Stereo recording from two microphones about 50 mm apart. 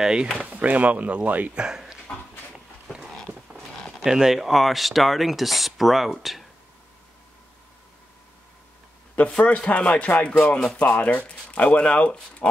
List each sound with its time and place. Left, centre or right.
0.0 s speech: centre
0.4 s speech: right
1.5 s speech: centre
2.5 s a sound: centre
4.0 s speech: centre
9.4 s speech: left